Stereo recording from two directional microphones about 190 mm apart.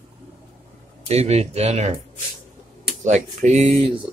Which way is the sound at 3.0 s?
40° right (ahead or behind).